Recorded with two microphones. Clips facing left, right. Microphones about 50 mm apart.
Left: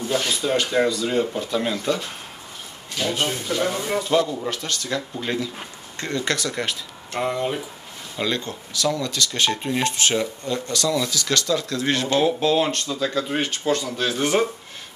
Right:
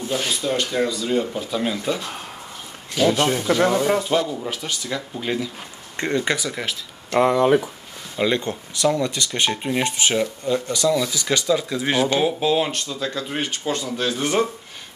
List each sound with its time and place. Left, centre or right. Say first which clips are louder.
0.1 s speech: left 1 dB; centre
3.2 s speech: right 5 dB; right
4.1 s speech: left 1 dB; centre
5.9 s speech: right 3 dB; right; by 6.8 s centre
7.1 s speech: right 8 dB; right
8.2 s speech: right 4 dB; right; by 13.4 s centre
13.4 s speech: even; centre